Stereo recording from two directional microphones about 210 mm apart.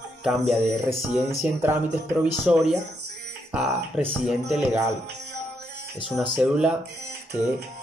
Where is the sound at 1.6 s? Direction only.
10° right (ahead or behind).